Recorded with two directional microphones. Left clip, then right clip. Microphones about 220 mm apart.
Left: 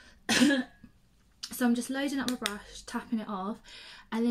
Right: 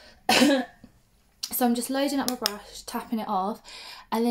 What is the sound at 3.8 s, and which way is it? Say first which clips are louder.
Speech: right 8 dB; 15° left (ahead or behind).